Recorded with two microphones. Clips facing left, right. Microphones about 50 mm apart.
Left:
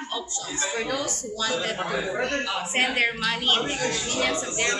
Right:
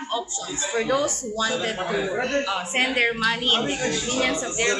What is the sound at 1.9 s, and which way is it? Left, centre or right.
A man's voice, centre.